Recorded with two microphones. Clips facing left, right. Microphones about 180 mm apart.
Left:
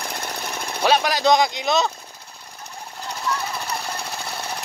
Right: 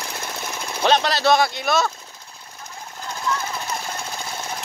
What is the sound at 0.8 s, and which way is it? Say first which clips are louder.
Speech: even; 10° left (ahead or behind).